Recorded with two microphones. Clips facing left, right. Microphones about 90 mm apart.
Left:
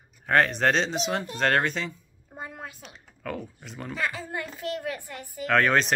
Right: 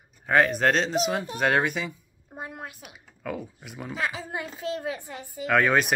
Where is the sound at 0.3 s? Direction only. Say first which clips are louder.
Right 1 dB; 5° right (ahead or behind); by 5.5 s 25° right (ahead or behind).